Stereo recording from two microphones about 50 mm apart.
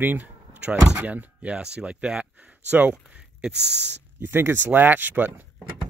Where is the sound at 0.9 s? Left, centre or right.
Right.